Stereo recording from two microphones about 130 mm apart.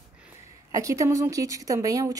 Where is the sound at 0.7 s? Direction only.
25° right (ahead or behind).